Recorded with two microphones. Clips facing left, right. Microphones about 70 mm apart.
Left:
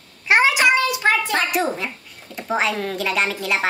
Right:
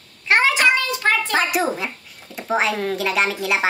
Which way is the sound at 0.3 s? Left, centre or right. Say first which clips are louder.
Left 1 dB; centre.